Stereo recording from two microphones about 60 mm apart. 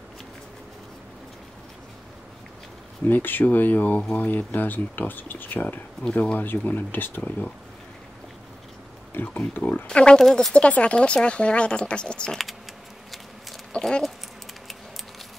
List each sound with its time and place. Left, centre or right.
3.1 s speech: left
9.1 s speech: left
9.8 s speech: centre
10.2 s speech: centre
10.5 s speech: centre
12.3 s speech: centre
13.7 s dog: centre